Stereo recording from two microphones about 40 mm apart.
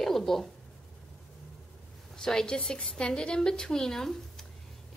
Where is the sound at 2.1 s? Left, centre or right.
Centre.